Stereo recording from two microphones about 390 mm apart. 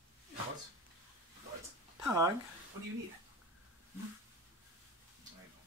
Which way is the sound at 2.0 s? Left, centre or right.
Centre.